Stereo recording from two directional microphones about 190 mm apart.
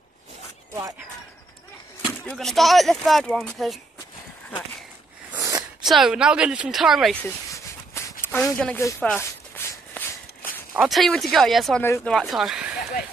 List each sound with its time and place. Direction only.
2.0 s speech: centre (ahead or behind)
5.3 s sneeze: 15° right (ahead or behind)
5.9 s speech: centre (ahead or behind)
7.2 s a sound: 15° left (ahead or behind)
10.7 s speech: centre (ahead or behind)